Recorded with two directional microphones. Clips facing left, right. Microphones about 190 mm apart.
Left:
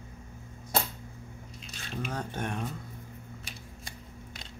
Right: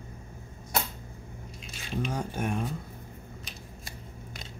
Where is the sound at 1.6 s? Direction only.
5° right (ahead or behind).